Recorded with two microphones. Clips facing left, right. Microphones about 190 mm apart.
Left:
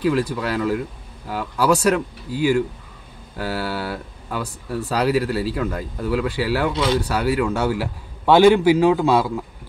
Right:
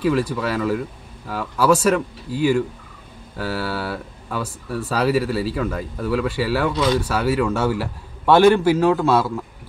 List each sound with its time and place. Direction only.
0.0 s speech: centre (ahead or behind)
6.7 s speech: 25° left (ahead or behind)
7.1 s a man's voice: centre (ahead or behind)